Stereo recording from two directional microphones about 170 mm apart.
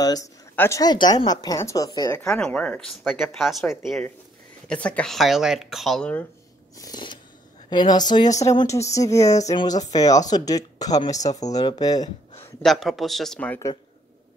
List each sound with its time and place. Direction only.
0.0 s speech: 20° left (ahead or behind)
2.2 s speech: 5° left (ahead or behind)
6.8 s speech: 25° left (ahead or behind)
12.6 s speech: centre (ahead or behind)